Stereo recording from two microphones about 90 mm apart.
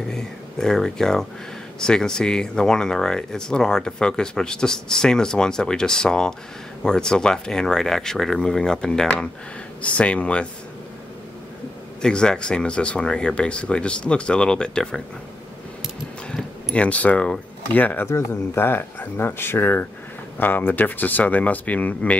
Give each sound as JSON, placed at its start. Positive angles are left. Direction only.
{"t": 0.1, "sound": "speech", "side_deg": 5}
{"t": 12.0, "sound": "speech", "side_deg": 10}
{"t": 16.7, "sound": "speech", "side_deg": 15}